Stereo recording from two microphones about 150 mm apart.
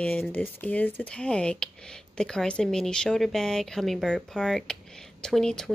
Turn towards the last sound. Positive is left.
turn(degrees=5)  # may be behind; listen again after turning